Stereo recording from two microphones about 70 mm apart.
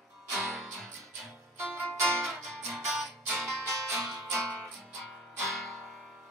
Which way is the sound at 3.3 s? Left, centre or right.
Right.